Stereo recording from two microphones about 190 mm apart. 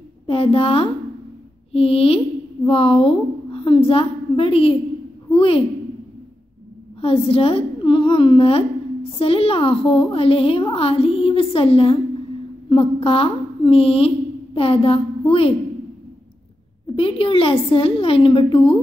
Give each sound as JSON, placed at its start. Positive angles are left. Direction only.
{"t": 0.3, "sound": "a woman's voice", "side_deg": 30}
{"t": 7.0, "sound": "a woman's voice", "side_deg": 30}
{"t": 16.8, "sound": "a woman's voice", "side_deg": 30}